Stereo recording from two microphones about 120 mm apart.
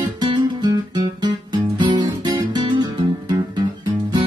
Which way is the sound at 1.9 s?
35° right (ahead or behind).